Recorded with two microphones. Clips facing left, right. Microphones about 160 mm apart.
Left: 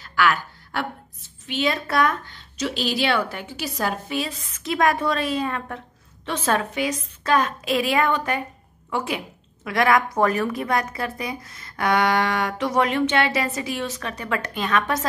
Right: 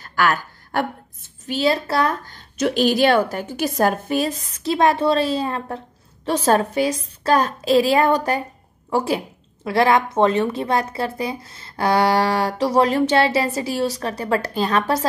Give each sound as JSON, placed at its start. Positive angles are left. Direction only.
{"t": 0.0, "sound": "a woman's voice", "side_deg": -45}